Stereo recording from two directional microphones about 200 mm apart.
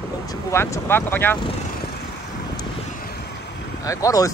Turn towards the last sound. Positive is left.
turn(degrees=15)  # may be behind; listen again after turning